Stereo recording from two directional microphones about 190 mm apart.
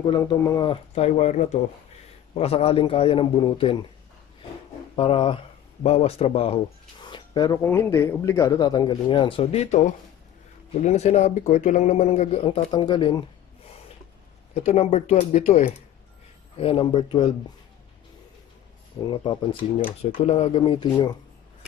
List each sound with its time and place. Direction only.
0.1 s speech: 25° left (ahead or behind)
4.9 s speech: 30° left (ahead or behind)
14.5 s speech: 35° left (ahead or behind)
16.5 s speech: 30° left (ahead or behind)
19.0 s speech: 25° left (ahead or behind)